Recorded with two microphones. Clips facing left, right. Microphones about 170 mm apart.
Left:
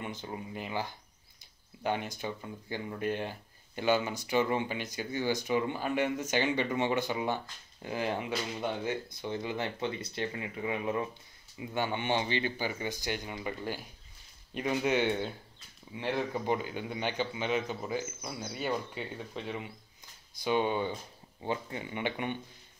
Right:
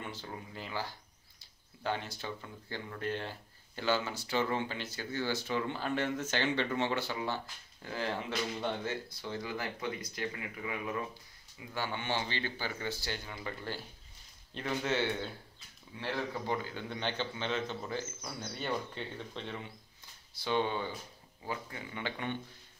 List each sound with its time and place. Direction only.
0.0 s speech: 15° left (ahead or behind)